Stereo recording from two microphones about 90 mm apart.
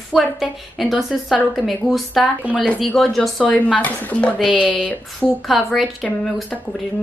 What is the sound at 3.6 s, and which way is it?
Speech, 15° left (ahead or behind).